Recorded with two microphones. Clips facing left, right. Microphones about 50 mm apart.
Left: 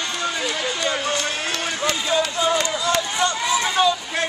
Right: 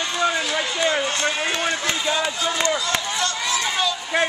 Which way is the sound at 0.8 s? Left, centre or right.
Centre.